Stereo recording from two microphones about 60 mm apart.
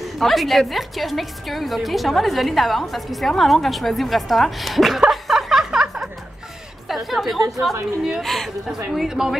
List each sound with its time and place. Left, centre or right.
0.0 s a woman's voice: centre
5.1 s snicker: centre
7.1 s a woman's voice: centre
8.9 s speech: centre